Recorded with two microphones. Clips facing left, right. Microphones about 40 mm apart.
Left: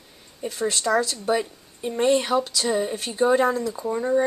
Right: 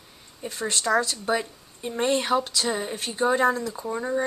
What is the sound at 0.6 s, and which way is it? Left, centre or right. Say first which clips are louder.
A woman's voice: left 1 dB; centre.